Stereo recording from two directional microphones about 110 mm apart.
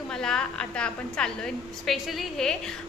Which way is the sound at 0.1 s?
5° left (ahead or behind).